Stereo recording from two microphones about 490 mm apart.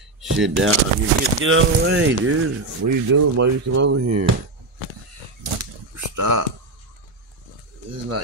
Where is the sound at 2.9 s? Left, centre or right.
Right.